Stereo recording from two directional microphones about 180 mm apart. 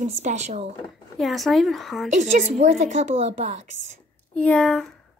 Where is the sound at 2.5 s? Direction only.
40° right (ahead or behind).